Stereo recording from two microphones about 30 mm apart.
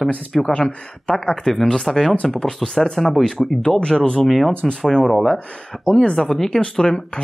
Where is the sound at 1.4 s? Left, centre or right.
Centre.